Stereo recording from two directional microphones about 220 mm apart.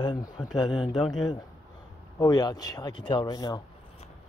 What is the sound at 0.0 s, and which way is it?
Speech, 20° left (ahead or behind).